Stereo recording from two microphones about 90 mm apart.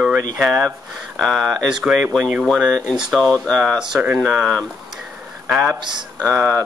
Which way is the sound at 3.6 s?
5° right (ahead or behind).